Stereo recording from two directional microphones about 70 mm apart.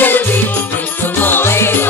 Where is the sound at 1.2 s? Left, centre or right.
Left.